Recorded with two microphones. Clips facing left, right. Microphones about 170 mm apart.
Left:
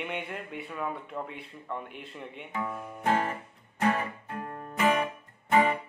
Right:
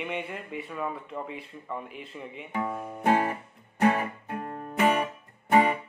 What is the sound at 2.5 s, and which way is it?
Guitar, 30° right (ahead or behind).